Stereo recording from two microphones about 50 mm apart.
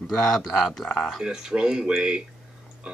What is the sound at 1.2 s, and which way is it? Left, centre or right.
Speech, centre.